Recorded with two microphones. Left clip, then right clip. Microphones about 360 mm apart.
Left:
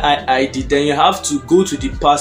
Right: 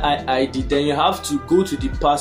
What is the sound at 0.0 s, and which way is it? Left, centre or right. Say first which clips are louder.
Speech: left 5 dB; right.